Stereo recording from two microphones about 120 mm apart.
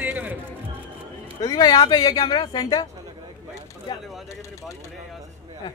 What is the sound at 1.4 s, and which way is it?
Speech, 30° left (ahead or behind).